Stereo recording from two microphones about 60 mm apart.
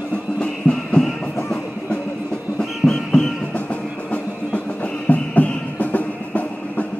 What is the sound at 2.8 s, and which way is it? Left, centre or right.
Music, centre.